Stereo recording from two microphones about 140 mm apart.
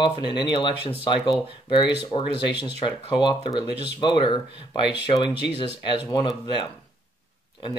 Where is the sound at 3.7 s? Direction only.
50° right (ahead or behind).